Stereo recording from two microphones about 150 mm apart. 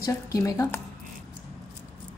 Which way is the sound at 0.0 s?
20° left (ahead or behind).